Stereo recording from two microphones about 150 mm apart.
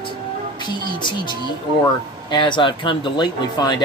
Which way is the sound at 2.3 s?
30° left (ahead or behind).